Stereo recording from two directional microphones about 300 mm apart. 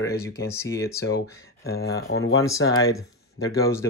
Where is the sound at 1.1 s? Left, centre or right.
Left.